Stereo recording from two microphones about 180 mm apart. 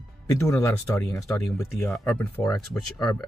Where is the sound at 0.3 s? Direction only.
15° left (ahead or behind).